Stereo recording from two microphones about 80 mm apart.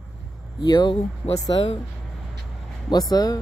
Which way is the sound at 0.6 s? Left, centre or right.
Left.